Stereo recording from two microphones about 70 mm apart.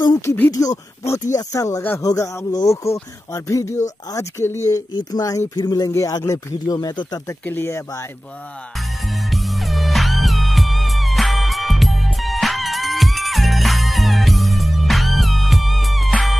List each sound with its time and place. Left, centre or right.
0.5 s speech: left
1.0 s speech: left
5.6 s speech: left
5.9 s speech: left
6.6 s speech: left
7.6 s speech: left
8.7 s music: centre